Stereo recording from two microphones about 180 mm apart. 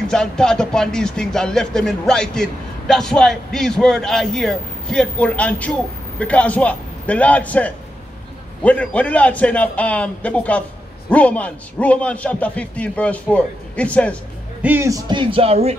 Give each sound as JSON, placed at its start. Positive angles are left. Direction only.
{"t": 0.1, "sound": "a man's voice", "side_deg": 5}
{"t": 14.6, "sound": "speech", "side_deg": -10}